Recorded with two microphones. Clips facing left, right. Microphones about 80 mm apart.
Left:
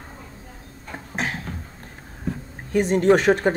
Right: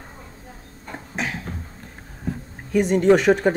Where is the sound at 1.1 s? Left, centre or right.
Left.